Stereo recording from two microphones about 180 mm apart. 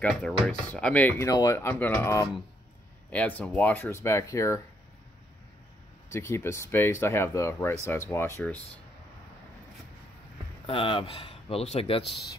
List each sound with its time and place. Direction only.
0.0 s speech: 5° left (ahead or behind)
6.0 s speech: 15° left (ahead or behind)
10.7 s speech: 30° left (ahead or behind)